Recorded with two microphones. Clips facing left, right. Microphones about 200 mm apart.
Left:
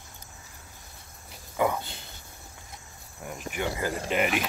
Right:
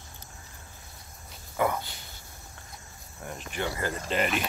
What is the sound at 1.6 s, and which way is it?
Speech, 15° left (ahead or behind).